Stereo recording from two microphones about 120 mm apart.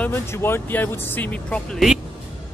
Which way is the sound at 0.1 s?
20° left (ahead or behind).